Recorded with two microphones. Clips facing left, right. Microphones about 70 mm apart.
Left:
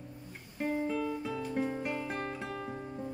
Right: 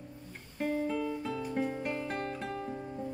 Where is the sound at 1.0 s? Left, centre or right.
Centre.